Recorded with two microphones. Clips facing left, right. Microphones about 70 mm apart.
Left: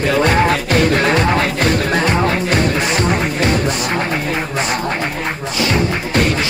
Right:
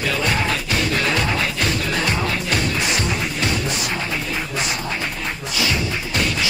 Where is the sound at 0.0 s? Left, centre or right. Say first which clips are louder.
Left 8 dB; left.